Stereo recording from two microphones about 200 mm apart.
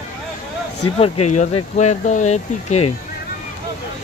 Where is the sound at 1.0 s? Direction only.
35° left (ahead or behind).